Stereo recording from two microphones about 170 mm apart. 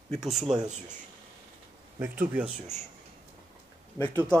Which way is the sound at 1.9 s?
10° right (ahead or behind).